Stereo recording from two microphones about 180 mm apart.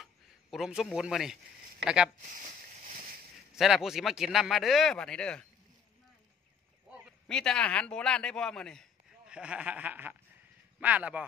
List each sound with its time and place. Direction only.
0.0 s a man's voice: centre (ahead or behind)
2.3 s a sound: 45° right (ahead or behind)
3.5 s speech: centre (ahead or behind)
7.2 s speech: 5° left (ahead or behind)
9.3 s snicker: 5° right (ahead or behind)